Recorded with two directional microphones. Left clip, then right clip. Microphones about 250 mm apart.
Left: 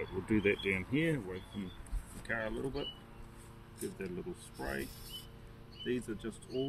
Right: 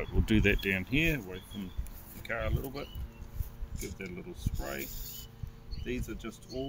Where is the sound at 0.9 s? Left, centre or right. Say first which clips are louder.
Right 4 dB; right; by 6.6 s centre.